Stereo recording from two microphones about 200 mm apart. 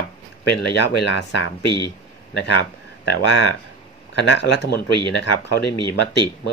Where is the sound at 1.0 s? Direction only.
60° left (ahead or behind).